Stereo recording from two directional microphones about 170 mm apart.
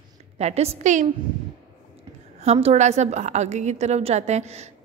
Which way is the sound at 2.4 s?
40° right (ahead or behind).